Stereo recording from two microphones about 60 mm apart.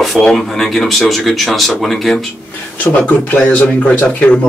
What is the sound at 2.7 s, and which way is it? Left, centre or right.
Speech, left.